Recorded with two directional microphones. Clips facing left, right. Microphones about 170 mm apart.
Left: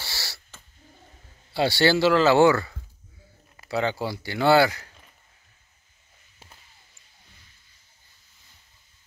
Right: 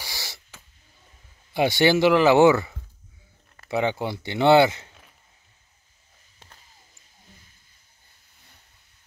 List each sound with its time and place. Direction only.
0.0 s owl: 15° right (ahead or behind)
1.5 s speech: 20° right (ahead or behind)